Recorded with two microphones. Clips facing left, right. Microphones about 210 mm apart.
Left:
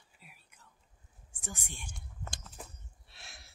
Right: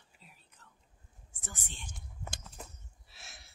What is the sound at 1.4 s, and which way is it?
Speech, 15° left (ahead or behind).